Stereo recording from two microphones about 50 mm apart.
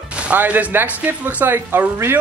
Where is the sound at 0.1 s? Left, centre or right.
Right.